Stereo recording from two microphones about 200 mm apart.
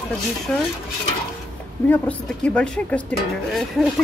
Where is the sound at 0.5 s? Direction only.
5° left (ahead or behind).